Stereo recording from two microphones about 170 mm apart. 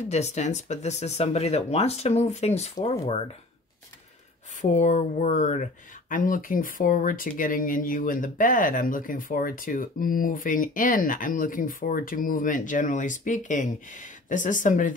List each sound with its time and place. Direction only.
0.1 s speech: 40° left (ahead or behind)
4.6 s speech: 45° left (ahead or behind)